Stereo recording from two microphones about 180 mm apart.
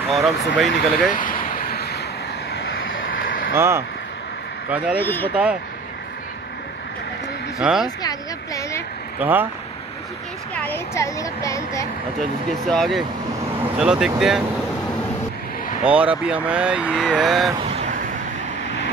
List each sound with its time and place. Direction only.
0.1 s speech: centre (ahead or behind)
1.1 s vehicle: 50° left (ahead or behind)
2.5 s vehicle: 75° left (ahead or behind); by 3.3 s 90° left
3.5 s speech: 15° right (ahead or behind)
5.0 s speech: 10° left (ahead or behind)
5.3 s speech: 5° right (ahead or behind)
7.5 s speech: centre (ahead or behind)
7.8 s a sound: 20° left (ahead or behind)
9.2 s speech: 10° right (ahead or behind)
10.5 s speech: 10° left (ahead or behind)
12.6 s speech: centre (ahead or behind)
15.8 s speech: 5° right (ahead or behind)
17.6 s vehicle: 35° right (ahead or behind)